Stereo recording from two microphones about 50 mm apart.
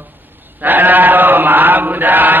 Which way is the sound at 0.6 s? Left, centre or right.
Right.